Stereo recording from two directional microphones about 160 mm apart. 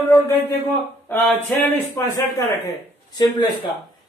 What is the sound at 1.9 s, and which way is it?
A man's voice, 15° left (ahead or behind).